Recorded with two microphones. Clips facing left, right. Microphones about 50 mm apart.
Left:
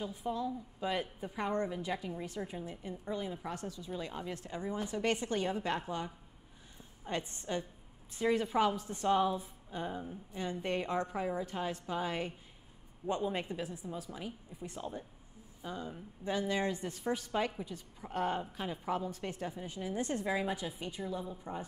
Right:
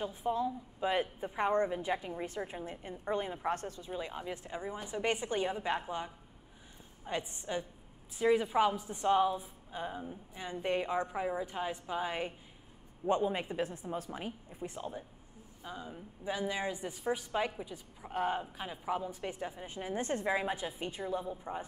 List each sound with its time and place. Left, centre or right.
0.0 s a woman's voice: right
3.9 s a woman's voice: centre
13.6 s a woman's voice: right
14.8 s a woman's voice: centre